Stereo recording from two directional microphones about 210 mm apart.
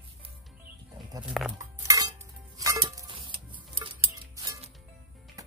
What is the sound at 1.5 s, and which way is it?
Music, 20° right (ahead or behind).